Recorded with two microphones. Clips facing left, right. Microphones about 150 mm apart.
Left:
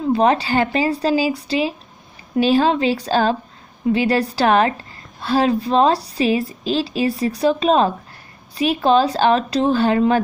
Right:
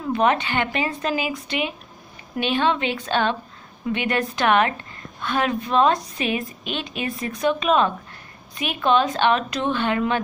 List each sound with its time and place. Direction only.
0.0 s a woman's voice: 30° left (ahead or behind)